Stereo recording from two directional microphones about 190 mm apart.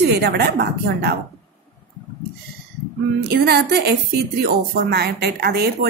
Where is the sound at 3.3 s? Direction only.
60° right (ahead or behind).